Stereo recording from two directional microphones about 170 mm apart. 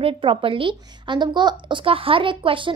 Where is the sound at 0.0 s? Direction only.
30° right (ahead or behind).